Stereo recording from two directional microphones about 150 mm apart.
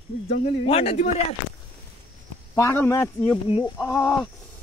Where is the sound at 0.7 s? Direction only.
45° left (ahead or behind).